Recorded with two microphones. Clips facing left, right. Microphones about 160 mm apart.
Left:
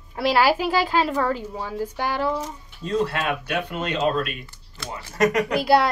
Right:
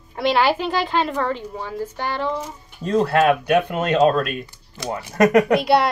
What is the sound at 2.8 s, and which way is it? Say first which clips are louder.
Speech: right 7 dB; 45° right (ahead or behind).